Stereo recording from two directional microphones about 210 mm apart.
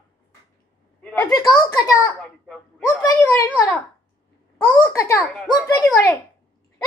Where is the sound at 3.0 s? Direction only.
15° left (ahead or behind).